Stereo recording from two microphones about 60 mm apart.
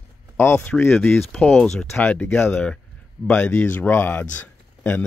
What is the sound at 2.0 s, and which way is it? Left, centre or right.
Speech, left.